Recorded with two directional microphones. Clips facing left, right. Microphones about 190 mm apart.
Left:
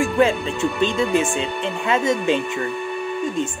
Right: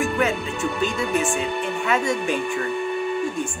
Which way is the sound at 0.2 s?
25° left (ahead or behind).